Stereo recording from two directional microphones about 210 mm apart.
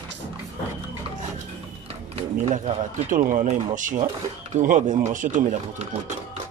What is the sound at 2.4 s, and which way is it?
Speech, 35° right (ahead or behind).